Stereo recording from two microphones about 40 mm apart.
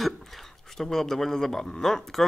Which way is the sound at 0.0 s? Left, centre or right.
Centre.